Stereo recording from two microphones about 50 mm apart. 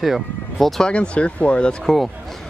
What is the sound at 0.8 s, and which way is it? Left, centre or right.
Speech, left.